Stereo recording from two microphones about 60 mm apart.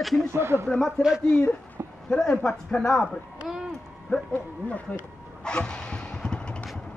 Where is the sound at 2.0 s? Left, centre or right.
Centre.